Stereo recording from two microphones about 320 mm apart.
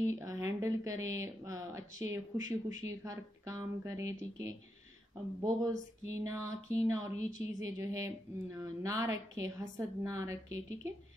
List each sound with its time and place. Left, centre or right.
0.1 s speech: centre
7.2 s a woman's voice: left
7.6 s speech: centre